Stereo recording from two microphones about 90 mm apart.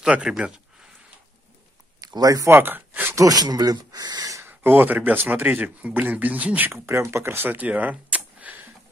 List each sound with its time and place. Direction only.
0.0 s speech: 10° right (ahead or behind)
2.0 s speech: 45° right (ahead or behind)
2.5 s a sound: 20° right (ahead or behind)
3.2 s speech: 45° right (ahead or behind)
4.4 s speech: 25° right (ahead or behind)
6.9 s speech: 30° right (ahead or behind)